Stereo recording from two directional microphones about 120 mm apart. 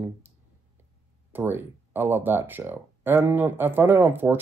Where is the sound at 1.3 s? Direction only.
15° right (ahead or behind).